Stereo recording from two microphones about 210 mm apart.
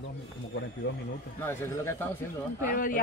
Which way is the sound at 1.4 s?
10° left (ahead or behind).